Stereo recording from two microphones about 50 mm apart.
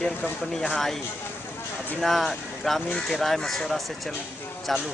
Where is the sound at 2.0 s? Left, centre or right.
Centre.